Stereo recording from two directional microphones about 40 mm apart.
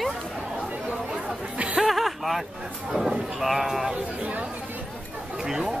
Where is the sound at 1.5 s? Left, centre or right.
Right.